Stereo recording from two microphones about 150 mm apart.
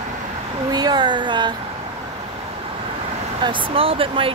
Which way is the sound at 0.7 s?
25° right (ahead or behind).